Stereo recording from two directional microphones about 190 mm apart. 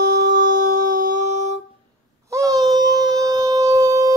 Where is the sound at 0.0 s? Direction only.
55° right (ahead or behind).